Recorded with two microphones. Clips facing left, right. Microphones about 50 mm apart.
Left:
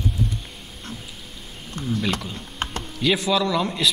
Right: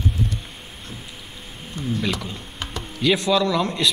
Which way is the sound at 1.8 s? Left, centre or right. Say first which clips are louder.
Right 1 dB; left.